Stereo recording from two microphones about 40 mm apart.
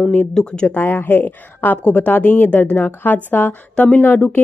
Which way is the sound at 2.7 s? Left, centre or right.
Left.